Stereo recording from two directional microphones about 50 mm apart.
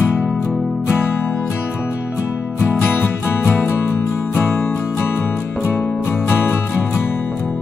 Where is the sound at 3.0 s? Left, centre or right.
Left.